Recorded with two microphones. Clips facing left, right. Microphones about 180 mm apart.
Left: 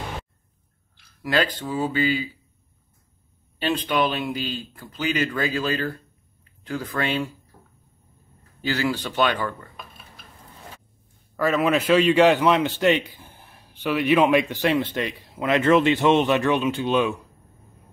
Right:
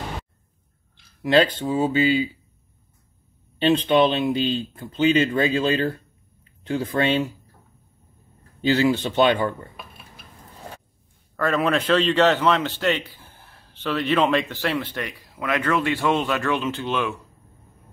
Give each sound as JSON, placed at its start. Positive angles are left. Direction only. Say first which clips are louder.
{"t": 1.2, "sound": "speech", "louder": "right 5 dB", "side_deg": -25}
{"t": 3.5, "sound": "speech", "louder": "right 6 dB", "side_deg": -25}
{"t": 8.5, "sound": "speech", "louder": "right 6 dB", "side_deg": -25}
{"t": 11.3, "sound": "a man's voice", "louder": "left 1 dB", "side_deg": 5}